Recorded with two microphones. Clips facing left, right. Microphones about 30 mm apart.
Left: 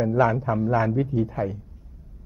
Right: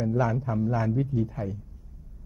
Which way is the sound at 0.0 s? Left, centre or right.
Left.